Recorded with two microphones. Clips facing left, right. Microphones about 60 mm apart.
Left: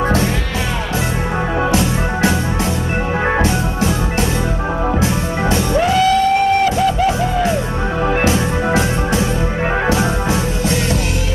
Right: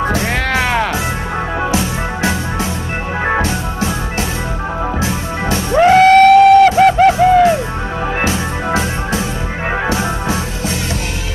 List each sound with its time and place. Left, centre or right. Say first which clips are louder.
1.7 s music: left 1 dB; centre
3.3 s organ: left 1 dB; centre
5.8 s music: right 8 dB; right
6.3 s a sound: right 8 dB; right
8.2 s music: left 2 dB; centre